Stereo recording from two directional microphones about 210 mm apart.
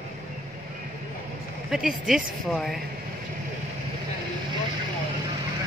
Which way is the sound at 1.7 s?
Centre (ahead or behind).